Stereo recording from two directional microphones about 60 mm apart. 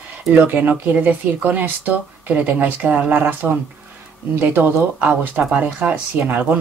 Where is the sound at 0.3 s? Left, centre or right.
Right.